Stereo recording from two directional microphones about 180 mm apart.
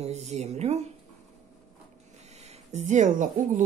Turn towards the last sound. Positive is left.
turn(degrees=-45)  # may be behind; listen again after turning